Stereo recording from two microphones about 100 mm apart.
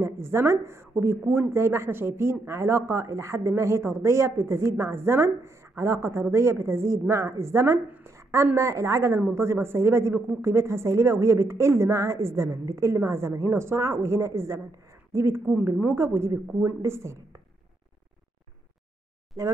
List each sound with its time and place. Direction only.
0.0 s speech: 25° right (ahead or behind)
8.0 s a sound: 30° right (ahead or behind)
8.5 s speech: 30° right (ahead or behind)